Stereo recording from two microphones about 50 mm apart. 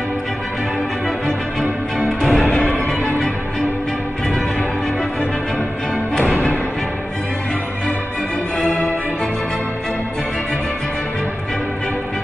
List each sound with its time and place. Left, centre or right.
2.0 s music: centre
2.3 s music: left
8.6 s music: left